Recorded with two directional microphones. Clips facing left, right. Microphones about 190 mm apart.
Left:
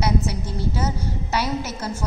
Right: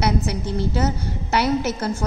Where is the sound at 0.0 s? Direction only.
65° right (ahead or behind).